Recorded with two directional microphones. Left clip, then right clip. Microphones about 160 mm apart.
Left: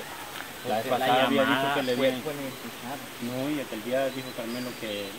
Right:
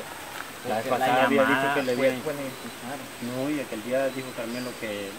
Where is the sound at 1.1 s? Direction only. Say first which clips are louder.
Right 2 dB; centre (ahead or behind).